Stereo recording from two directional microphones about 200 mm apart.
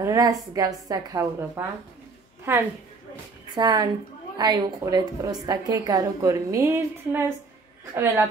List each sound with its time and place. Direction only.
0.0 s a woman's voice: 15° right (ahead or behind)